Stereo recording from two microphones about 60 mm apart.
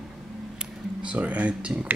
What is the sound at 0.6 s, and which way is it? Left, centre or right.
Speech, centre.